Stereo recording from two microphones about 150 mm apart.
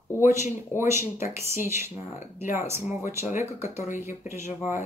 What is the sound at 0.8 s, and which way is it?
Speech, 15° right (ahead or behind).